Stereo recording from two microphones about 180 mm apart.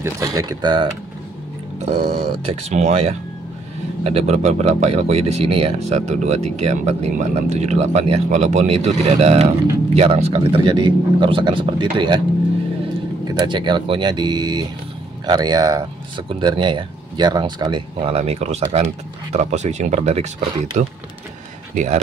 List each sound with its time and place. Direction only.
0.0 s speech: 20° right (ahead or behind)
2.2 s speech: 35° right (ahead or behind)
13.3 s speech: 25° right (ahead or behind)